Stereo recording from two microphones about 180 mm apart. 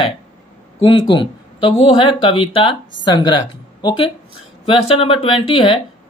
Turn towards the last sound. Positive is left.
turn(degrees=30)  # may be behind; listen again after turning